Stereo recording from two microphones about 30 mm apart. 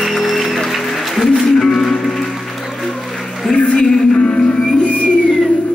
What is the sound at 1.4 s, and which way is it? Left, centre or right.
Music, centre.